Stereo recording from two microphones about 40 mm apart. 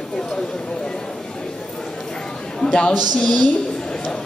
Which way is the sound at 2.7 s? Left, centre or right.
Left.